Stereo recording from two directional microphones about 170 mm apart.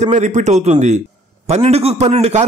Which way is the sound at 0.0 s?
45° right (ahead or behind).